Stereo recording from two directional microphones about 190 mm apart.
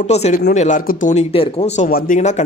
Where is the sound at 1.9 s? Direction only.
45° left (ahead or behind).